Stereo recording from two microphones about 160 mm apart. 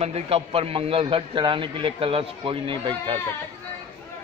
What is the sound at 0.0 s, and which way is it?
A man's voice, 40° right (ahead or behind).